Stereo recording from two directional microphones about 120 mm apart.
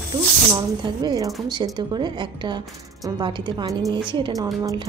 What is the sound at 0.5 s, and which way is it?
A woman's voice, 35° right (ahead or behind).